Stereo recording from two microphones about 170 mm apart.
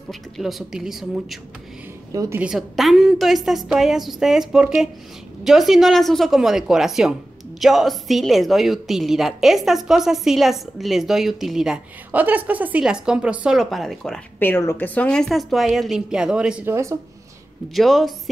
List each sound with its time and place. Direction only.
0.1 s a woman's voice: centre (ahead or behind)
2.1 s a woman's voice: 15° right (ahead or behind)
2.4 s a woman's voice: centre (ahead or behind)
14.4 s a woman's voice: 15° left (ahead or behind); by 17.0 s 15° right (ahead or behind)
17.7 s a woman's voice: centre (ahead or behind)